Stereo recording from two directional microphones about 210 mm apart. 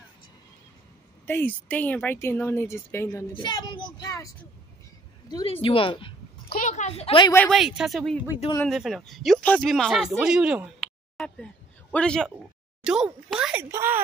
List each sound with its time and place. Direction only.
1.2 s speech: 10° left (ahead or behind)
5.3 s speech: 25° left (ahead or behind)
7.3 s speech: centre (ahead or behind)